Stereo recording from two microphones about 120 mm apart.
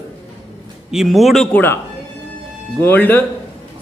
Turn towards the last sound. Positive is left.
turn(degrees=15)  # may be behind; listen again after turning